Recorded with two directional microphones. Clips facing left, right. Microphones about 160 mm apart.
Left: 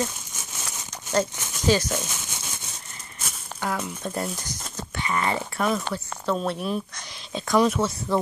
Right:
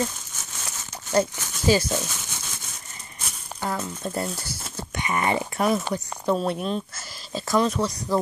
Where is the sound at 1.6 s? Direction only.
10° right (ahead or behind).